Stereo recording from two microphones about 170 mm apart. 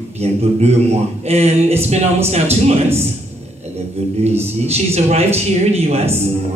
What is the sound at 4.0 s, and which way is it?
A man's voice, 35° right (ahead or behind).